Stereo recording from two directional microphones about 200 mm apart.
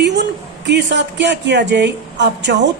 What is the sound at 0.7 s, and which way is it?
Speech, 60° right (ahead or behind).